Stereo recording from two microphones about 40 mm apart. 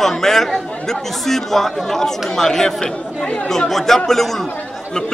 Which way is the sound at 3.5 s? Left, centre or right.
Centre.